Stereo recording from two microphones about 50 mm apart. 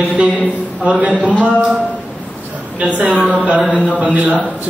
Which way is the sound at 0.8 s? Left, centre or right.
Right.